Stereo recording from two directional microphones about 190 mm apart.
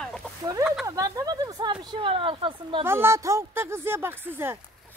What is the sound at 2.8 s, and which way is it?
Speech, 10° right (ahead or behind).